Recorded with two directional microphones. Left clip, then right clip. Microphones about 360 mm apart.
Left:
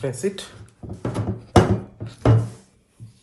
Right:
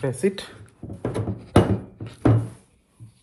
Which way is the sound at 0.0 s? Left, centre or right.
Centre.